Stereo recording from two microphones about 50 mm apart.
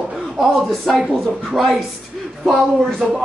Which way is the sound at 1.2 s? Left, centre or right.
Centre.